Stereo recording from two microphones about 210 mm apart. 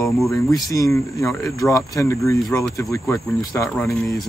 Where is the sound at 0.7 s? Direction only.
15° left (ahead or behind).